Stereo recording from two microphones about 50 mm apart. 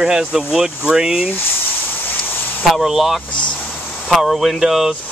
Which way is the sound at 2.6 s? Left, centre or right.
Centre.